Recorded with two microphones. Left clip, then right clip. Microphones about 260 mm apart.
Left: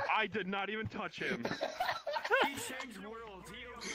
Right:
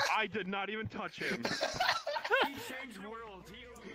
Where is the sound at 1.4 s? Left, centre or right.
Right.